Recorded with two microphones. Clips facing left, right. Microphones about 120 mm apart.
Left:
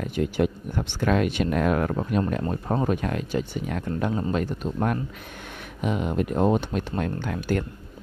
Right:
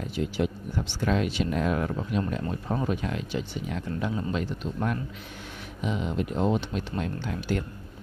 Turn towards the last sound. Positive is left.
turn(degrees=55)  # may be behind; listen again after turning